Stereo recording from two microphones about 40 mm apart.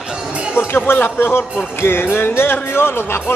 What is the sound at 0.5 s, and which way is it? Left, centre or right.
Speech, left.